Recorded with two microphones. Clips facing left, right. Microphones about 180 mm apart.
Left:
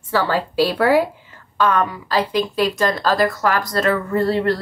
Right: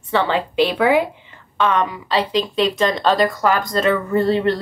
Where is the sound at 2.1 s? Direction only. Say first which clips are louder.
Even; 25° right (ahead or behind).